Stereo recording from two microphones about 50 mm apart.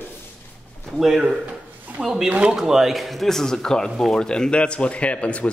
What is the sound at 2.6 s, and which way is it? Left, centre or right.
Speech, centre.